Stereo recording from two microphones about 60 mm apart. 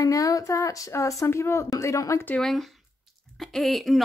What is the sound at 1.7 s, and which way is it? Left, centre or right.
Speech, left.